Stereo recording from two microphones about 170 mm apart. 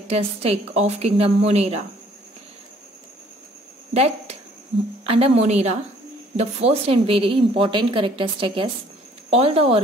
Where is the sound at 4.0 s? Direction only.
40° right (ahead or behind).